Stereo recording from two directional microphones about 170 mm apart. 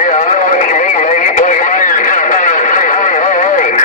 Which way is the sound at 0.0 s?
50° left (ahead or behind).